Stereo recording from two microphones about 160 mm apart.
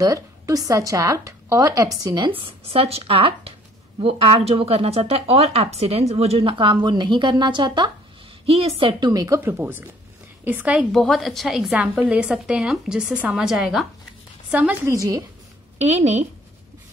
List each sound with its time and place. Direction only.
0.0 s a woman's voice: 20° right (ahead or behind)
15.0 s a woman's voice: 25° right (ahead or behind)
15.8 s speech: 45° right (ahead or behind)